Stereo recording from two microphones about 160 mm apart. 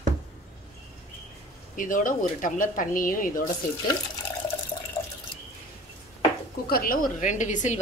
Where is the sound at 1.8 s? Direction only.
55° left (ahead or behind).